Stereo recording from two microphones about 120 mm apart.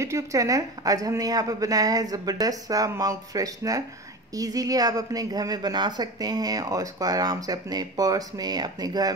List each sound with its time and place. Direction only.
0.0 s a woman's voice: 25° right (ahead or behind)